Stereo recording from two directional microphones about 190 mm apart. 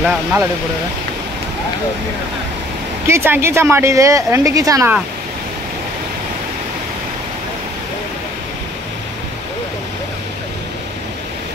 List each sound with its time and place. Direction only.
0.0 s a woman's voice: 5° right (ahead or behind)
3.1 s a woman's voice: 10° right (ahead or behind)